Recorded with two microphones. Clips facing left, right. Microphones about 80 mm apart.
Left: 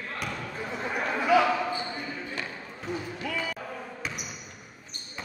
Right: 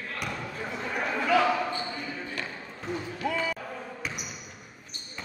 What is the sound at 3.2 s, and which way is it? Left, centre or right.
Basketball bounce, right.